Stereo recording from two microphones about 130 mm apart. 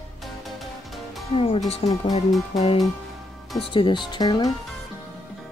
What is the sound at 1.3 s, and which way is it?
Speech, 45° left (ahead or behind).